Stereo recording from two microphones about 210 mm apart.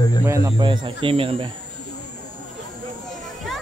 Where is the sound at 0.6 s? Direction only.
20° right (ahead or behind).